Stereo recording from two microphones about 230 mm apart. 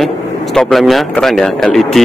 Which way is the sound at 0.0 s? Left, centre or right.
Centre.